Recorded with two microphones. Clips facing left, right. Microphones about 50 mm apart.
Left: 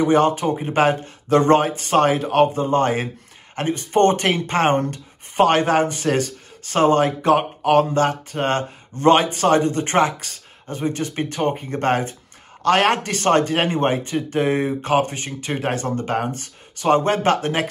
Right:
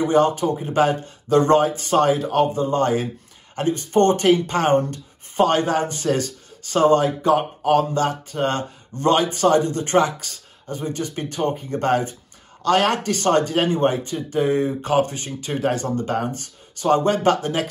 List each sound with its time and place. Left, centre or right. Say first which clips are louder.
0.0 s speech: left 1 dB; left